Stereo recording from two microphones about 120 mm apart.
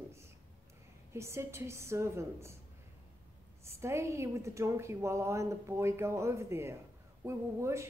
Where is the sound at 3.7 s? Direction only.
20° right (ahead or behind).